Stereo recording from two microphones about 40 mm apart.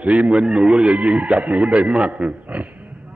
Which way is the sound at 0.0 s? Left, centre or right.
Right.